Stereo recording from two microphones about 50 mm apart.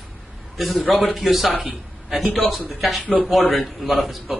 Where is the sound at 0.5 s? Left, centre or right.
Centre.